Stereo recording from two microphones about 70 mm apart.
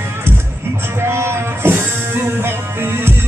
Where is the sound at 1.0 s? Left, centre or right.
Right.